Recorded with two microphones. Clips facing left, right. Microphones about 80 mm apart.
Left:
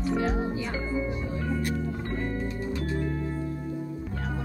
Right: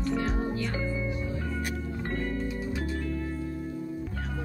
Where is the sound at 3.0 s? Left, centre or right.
Left.